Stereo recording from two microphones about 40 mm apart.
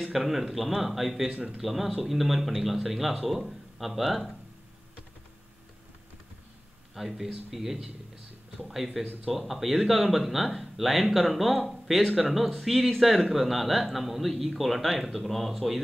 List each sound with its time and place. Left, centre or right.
0.0 s speech: centre
1.3 s speech: centre
1.6 s speech: centre
7.0 s speech: centre